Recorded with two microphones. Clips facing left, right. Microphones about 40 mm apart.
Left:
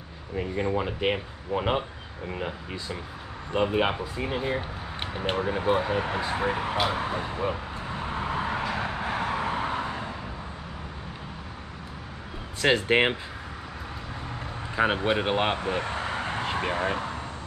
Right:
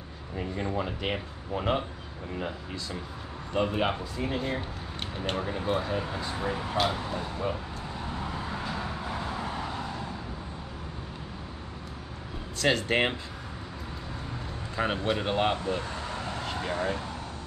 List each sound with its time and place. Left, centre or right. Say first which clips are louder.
0.4 s speech: left 4 dB; centre
5.9 s speech: left 5 dB; left
7.9 s vehicle: left 6 dB; left
12.5 s speech: left 4 dB; left
14.8 s speech: left 4 dB; left
15.6 s vehicle: left 3 dB; left